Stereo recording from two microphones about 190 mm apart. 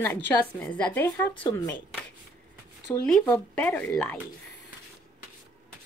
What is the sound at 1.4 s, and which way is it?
Speech, 20° left (ahead or behind).